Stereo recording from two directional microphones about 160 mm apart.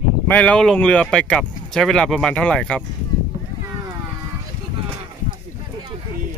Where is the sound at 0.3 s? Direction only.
10° left (ahead or behind).